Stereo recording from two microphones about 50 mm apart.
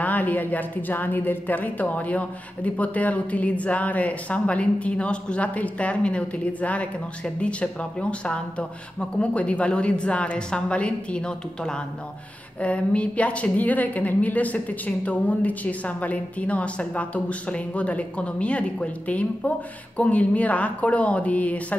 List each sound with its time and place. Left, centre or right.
0.0 s a woman's voice: left